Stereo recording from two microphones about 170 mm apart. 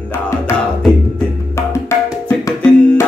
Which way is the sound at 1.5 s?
15° left (ahead or behind).